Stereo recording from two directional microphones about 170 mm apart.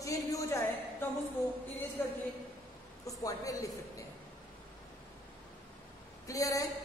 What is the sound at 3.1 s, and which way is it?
Speech, 20° left (ahead or behind).